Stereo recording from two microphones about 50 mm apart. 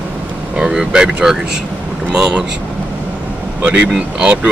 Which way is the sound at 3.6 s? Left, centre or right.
Right.